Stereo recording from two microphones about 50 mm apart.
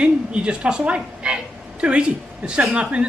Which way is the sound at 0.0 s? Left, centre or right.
Right.